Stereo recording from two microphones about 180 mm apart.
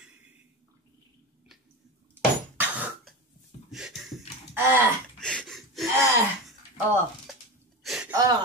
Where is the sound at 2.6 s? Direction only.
10° right (ahead or behind).